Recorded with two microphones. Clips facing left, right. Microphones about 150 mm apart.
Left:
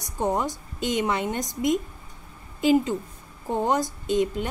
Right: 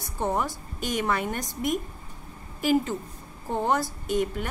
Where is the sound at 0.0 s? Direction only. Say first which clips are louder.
Left 2 dB; 15° left (ahead or behind).